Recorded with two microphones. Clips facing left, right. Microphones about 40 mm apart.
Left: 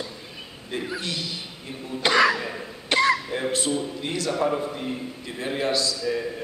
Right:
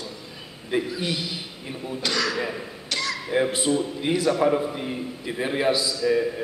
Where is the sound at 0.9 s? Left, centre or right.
Centre.